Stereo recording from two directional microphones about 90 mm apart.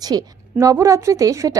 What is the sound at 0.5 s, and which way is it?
Speech, 35° right (ahead or behind).